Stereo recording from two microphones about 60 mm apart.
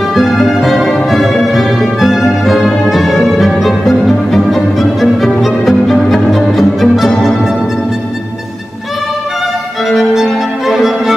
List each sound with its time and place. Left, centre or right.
0.1 s music: centre
9.8 s music: centre